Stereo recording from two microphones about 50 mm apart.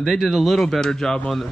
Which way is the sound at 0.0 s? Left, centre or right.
Centre.